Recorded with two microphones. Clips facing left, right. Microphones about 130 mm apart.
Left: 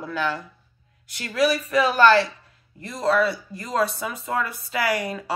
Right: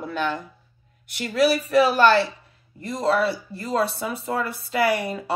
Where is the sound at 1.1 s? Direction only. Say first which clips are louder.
Right 2 dB; 25° right (ahead or behind).